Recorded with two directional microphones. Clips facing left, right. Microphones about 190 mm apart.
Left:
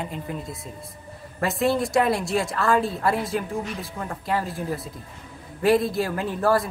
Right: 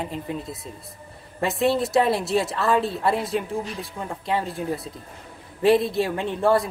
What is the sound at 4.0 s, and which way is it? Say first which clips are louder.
Speech: right 1 dB; 15° right (ahead or behind).